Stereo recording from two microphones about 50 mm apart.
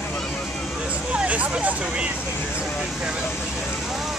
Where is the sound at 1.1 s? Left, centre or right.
Right.